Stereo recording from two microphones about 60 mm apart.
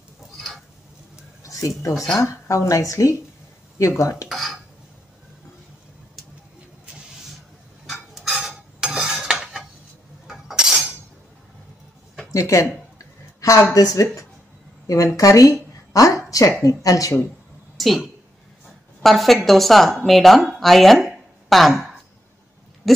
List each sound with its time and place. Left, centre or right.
1.4 s a sound: left
2.1 s speech: left
4.3 s cutlery: centre
7.8 s dishes: centre
10.2 s chink: centre
12.3 s speech: left
13.7 s a woman's voice: left
17.7 s a sound: centre
19.0 s speech: centre
22.8 s speech: centre